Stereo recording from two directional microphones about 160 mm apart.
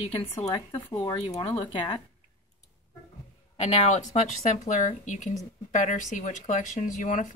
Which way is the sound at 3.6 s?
45° left (ahead or behind).